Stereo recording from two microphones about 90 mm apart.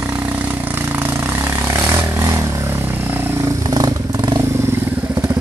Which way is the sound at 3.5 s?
45° right (ahead or behind).